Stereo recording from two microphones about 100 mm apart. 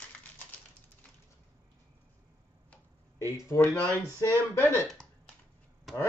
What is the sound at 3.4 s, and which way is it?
Speech, 20° left (ahead or behind).